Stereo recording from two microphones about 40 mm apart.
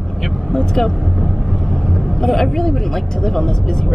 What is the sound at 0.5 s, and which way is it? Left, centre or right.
Speech, centre.